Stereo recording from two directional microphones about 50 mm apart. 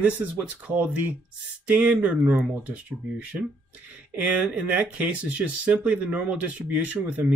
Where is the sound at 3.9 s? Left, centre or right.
Right.